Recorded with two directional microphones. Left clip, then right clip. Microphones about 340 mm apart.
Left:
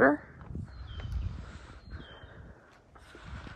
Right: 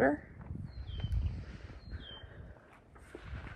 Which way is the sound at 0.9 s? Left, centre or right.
Centre.